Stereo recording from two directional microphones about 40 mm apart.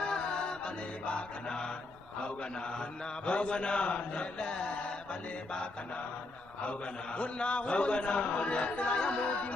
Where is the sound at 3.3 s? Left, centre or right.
Left.